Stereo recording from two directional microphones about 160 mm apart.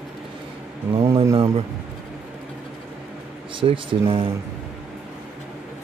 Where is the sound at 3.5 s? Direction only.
30° right (ahead or behind).